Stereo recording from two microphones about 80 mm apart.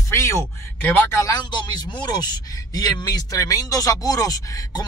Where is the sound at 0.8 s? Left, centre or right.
Left.